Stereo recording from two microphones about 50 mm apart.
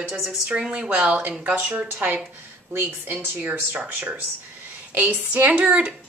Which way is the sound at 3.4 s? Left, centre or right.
Right.